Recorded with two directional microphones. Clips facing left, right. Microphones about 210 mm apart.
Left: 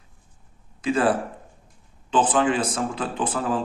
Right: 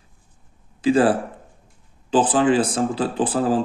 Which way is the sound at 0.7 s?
30° right (ahead or behind).